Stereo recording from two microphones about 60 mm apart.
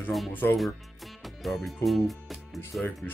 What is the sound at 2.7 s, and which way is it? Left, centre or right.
Speech, centre.